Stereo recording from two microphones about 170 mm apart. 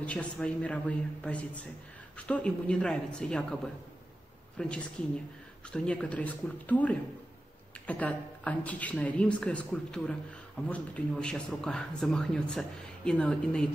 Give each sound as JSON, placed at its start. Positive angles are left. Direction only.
{"t": 0.0, "sound": "speech", "side_deg": 5}
{"t": 4.6, "sound": "speech", "side_deg": 5}